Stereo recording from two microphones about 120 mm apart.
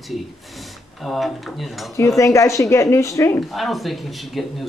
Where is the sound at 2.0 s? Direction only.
25° left (ahead or behind).